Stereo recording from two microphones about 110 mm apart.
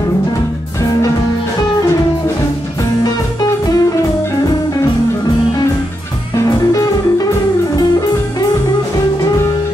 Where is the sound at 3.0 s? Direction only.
35° left (ahead or behind).